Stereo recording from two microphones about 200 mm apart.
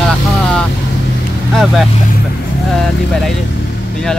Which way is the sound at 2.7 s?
Centre (ahead or behind).